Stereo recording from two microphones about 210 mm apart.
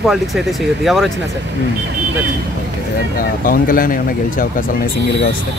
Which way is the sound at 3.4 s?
45° left (ahead or behind).